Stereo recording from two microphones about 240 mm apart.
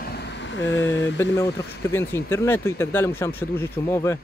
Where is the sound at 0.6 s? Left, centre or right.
Centre.